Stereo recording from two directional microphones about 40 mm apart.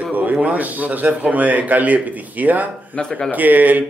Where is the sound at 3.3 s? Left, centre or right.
Right.